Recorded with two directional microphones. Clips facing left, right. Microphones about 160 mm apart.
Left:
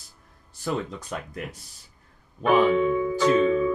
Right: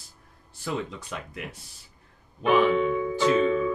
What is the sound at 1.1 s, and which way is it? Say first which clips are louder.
Speech: left 4 dB; 40° left (ahead or behind).